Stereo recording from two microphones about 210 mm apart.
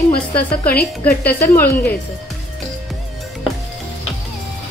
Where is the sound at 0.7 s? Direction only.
45° left (ahead or behind).